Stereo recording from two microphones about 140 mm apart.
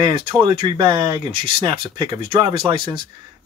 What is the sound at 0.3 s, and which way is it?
Speech, 35° right (ahead or behind).